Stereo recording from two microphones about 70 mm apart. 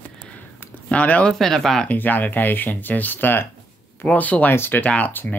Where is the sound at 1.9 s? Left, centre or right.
Left.